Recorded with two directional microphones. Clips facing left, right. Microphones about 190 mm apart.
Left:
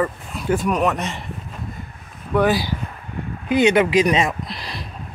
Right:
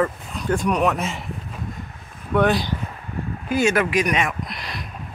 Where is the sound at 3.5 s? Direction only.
20° left (ahead or behind).